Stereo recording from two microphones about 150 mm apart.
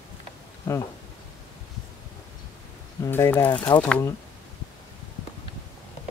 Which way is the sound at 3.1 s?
15° left (ahead or behind).